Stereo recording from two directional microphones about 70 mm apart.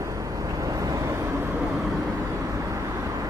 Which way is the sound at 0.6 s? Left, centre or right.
Right.